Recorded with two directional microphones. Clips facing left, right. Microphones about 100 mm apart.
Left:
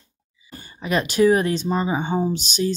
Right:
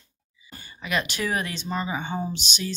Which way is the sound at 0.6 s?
30° left (ahead or behind).